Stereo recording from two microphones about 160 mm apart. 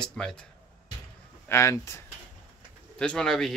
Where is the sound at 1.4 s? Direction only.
15° left (ahead or behind).